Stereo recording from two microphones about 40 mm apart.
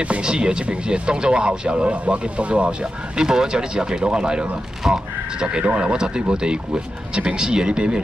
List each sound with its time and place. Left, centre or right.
0.2 s speech: right
3.2 s speech: centre